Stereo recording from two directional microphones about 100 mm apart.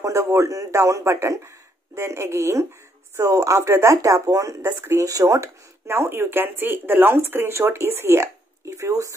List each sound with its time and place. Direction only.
0.0 s speech: 30° right (ahead or behind)